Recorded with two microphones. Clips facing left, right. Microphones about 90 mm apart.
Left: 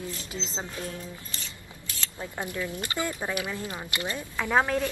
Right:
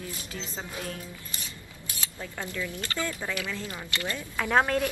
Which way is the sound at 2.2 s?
20° left (ahead or behind).